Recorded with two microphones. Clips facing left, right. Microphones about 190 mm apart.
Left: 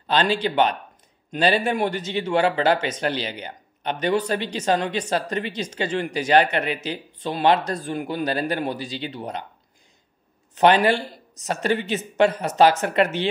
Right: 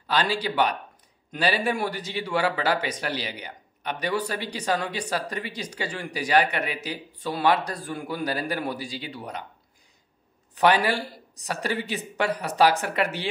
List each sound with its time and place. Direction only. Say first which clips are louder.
0.0 s speech: left 4 dB; 25° left (ahead or behind)
10.5 s speech: left 4 dB; 20° left (ahead or behind)